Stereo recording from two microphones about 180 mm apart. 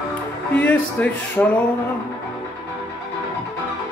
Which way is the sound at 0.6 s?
10° left (ahead or behind).